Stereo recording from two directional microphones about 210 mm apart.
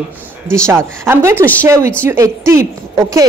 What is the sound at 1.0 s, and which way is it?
Speech, 10° right (ahead or behind).